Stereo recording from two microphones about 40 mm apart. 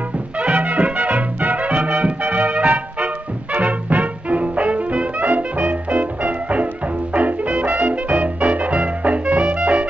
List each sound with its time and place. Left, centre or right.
0.4 s music: right
5.2 s music: right